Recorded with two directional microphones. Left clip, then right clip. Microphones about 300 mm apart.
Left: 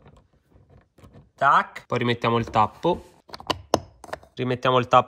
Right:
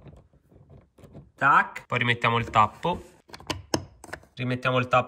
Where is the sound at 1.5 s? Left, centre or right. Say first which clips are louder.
Right 1 dB; centre.